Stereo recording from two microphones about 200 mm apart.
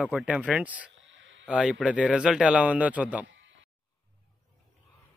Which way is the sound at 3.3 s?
65° right (ahead or behind).